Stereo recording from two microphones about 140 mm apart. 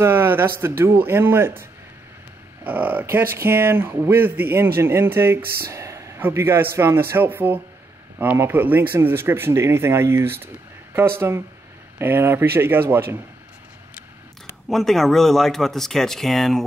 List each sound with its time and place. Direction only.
0.0 s speech: 15° right (ahead or behind)
2.6 s speech: 10° right (ahead or behind)
14.7 s speech: centre (ahead or behind)